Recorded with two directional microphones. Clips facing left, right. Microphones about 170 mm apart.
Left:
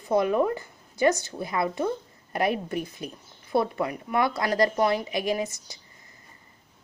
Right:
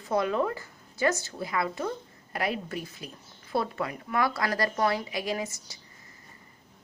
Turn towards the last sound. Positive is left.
turn(degrees=20)  # may be behind; listen again after turning